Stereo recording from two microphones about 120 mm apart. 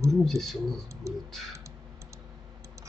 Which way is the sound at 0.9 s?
25° right (ahead or behind).